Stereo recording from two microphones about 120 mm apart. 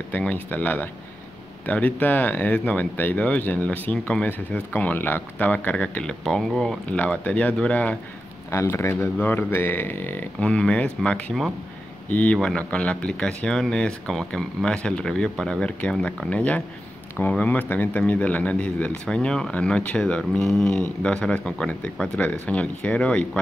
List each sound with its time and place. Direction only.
0.1 s speech: 15° left (ahead or behind)
6.9 s speech: 10° left (ahead or behind)
8.5 s speech: 25° left (ahead or behind)